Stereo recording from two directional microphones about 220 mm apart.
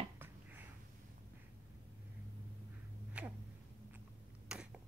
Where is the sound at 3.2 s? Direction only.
5° right (ahead or behind).